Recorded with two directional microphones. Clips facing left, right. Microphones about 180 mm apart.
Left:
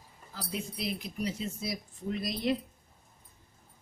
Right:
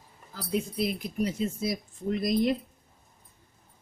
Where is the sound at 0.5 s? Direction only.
50° right (ahead or behind).